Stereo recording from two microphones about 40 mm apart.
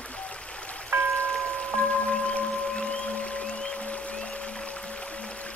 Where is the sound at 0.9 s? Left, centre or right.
Right.